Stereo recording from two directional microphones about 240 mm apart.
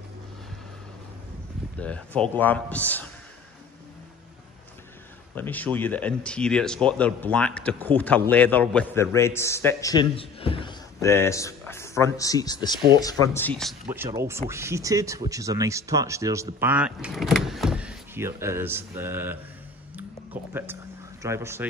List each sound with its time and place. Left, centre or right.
1.8 s a man's voice: centre
5.3 s speech: centre
13.8 s speech: centre
20.5 s a sound: centre
21.2 s speech: centre